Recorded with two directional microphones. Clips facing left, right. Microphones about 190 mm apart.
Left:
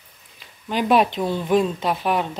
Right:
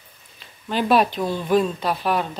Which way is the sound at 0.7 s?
15° left (ahead or behind).